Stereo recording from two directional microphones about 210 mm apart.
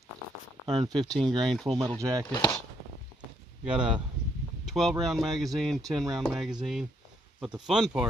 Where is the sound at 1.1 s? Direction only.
Centre (ahead or behind).